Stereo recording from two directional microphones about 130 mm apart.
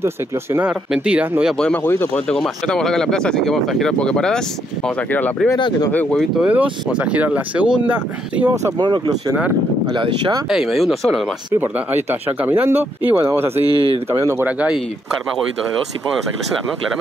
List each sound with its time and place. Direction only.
0.0 s speech: 20° right (ahead or behind)
0.7 s speech: 10° right (ahead or behind)
1.6 s speech: 15° left (ahead or behind)
2.2 s speech: 5° left (ahead or behind)
6.3 s speech: 10° right (ahead or behind)
8.6 s speech: 35° right (ahead or behind)
10.5 s speech: centre (ahead or behind)
11.6 s speech: 15° right (ahead or behind)
13.7 s speech: 30° left (ahead or behind)
14.4 s speech: 10° right (ahead or behind)